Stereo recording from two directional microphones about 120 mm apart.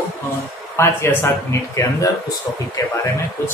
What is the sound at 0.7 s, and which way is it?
A man's voice, 20° left (ahead or behind).